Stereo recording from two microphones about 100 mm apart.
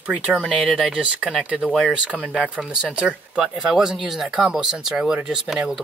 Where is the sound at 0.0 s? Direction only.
10° right (ahead or behind).